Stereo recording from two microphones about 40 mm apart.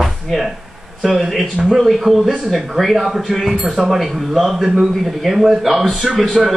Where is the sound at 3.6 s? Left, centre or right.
Right.